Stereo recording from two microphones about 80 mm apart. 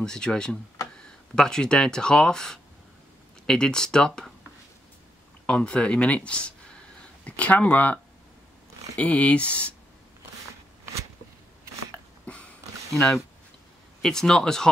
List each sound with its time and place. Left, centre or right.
0.0 s speech: centre
5.5 s speech: centre
14.0 s speech: centre